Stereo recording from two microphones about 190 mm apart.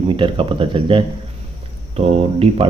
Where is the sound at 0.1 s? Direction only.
25° right (ahead or behind).